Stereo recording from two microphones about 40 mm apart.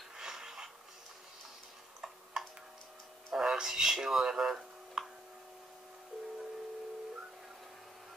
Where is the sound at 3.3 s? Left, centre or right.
Centre.